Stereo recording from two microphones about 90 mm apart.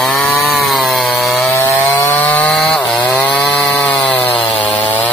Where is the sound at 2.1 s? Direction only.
20° left (ahead or behind).